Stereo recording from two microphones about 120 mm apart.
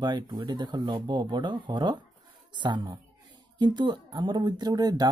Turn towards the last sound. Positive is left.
turn(degrees=-35)  # may be behind; listen again after turning